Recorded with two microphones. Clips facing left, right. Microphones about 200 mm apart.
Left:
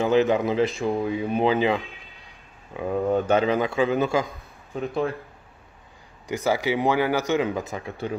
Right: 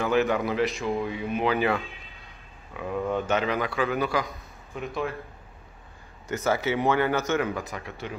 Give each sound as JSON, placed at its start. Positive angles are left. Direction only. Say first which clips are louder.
{"t": 0.0, "sound": "a man's voice", "louder": "left 4 dB", "side_deg": 20}
{"t": 6.2, "sound": "speech", "louder": "left 2 dB", "side_deg": 15}